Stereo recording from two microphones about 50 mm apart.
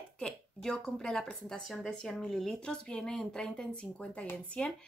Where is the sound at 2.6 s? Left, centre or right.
Centre.